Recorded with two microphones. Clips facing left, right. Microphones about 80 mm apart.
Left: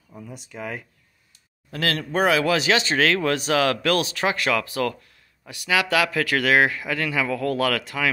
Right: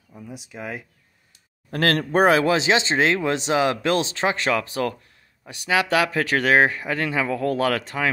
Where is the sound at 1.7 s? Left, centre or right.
Right.